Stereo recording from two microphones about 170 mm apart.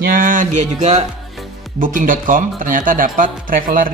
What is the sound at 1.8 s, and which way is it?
Speech, 50° right (ahead or behind).